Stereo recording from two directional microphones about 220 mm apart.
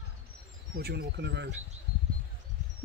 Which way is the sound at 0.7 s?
45° right (ahead or behind).